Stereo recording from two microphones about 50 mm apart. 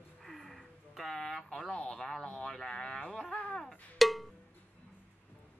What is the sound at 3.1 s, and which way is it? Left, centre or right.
Speech, centre.